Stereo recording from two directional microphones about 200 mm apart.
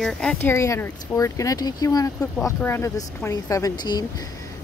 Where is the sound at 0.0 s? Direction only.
5° left (ahead or behind).